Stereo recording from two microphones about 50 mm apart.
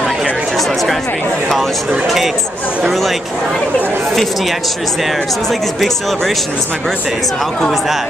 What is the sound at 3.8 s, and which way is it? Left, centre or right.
Speech, right.